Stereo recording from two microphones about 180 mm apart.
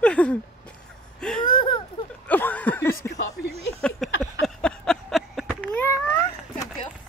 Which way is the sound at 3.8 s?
Centre (ahead or behind).